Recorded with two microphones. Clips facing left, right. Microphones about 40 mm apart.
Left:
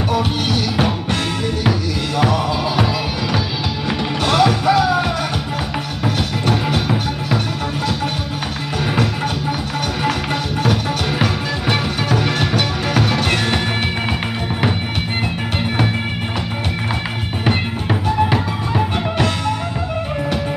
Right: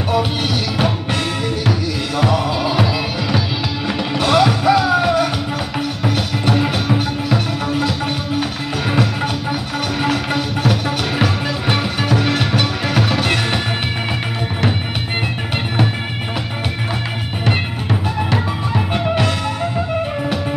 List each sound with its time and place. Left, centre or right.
0.1 s music: centre
8.9 s music: centre
18.8 s music: centre